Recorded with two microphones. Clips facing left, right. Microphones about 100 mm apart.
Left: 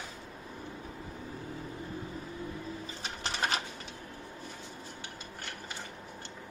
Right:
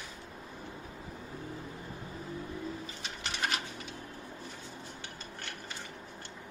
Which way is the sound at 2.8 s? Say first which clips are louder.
Left 2 dB; 35° left (ahead or behind).